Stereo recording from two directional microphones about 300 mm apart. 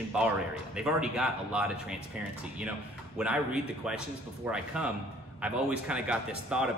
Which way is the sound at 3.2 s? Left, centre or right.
Centre.